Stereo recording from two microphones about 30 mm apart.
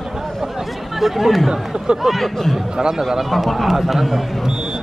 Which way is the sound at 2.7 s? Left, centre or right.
Centre.